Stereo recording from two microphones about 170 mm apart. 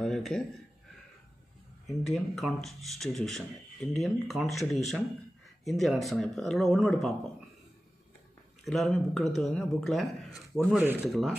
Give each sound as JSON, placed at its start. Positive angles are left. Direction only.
{"t": 0.0, "sound": "a sound", "side_deg": 5}
{"t": 1.9, "sound": "speech", "side_deg": 0}
{"t": 8.6, "sound": "speech", "side_deg": 0}